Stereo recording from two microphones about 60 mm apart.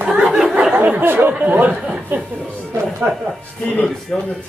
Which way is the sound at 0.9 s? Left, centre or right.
Right.